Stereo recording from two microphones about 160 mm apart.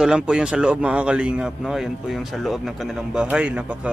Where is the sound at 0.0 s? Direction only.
5° right (ahead or behind).